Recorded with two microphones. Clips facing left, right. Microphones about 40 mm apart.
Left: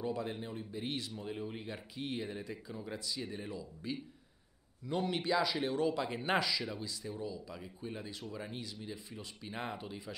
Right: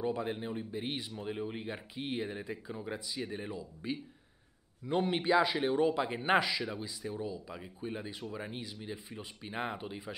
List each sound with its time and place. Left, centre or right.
0.0 s speech: right